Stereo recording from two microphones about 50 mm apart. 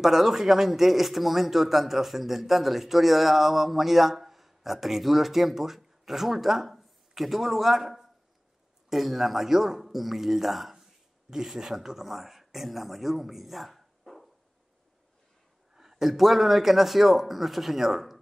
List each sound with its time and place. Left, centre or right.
0.0 s speech: centre
15.7 s speech: centre